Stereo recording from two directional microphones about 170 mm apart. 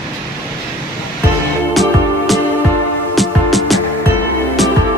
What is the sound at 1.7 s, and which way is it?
Music, centre (ahead or behind).